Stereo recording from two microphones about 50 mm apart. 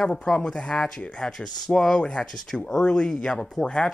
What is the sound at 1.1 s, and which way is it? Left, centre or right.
Speech, centre.